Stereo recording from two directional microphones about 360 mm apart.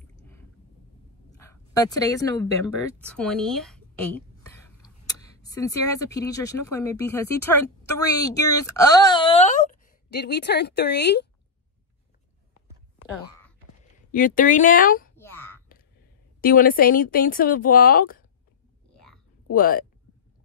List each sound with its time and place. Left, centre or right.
1.3 s a sound: centre
3.1 s a woman's voice: centre; by 11.2 s left
14.1 s speech: left
15.1 s a sound: centre
16.3 s speech: left
19.5 s speech: left